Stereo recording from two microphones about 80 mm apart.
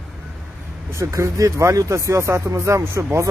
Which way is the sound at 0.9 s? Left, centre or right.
Right.